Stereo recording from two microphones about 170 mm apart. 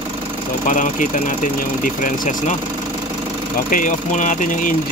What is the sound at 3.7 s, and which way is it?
Speech, 50° left (ahead or behind).